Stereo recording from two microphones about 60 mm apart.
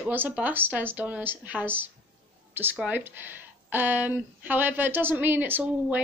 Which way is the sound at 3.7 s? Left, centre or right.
Right.